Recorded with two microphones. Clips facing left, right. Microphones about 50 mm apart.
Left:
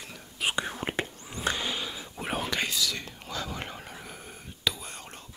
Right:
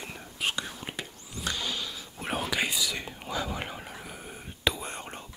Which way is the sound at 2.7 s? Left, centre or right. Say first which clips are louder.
Even; centre.